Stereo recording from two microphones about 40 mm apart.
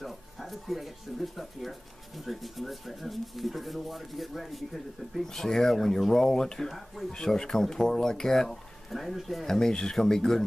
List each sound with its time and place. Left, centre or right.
0.0 s speech: centre
5.2 s speech: centre
9.5 s speech: centre